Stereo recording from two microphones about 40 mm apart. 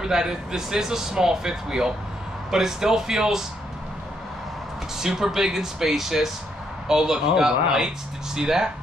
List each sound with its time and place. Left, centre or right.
0.0 s speech: centre
4.9 s speech: centre